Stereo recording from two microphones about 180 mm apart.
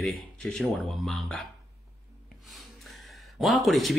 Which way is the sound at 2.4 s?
Centre (ahead or behind).